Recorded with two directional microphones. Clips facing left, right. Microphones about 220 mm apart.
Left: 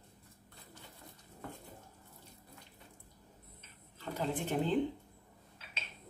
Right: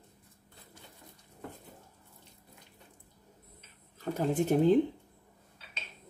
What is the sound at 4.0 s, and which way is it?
Speech, 40° right (ahead or behind).